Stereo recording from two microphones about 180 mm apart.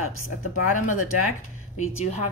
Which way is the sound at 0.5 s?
45° left (ahead or behind).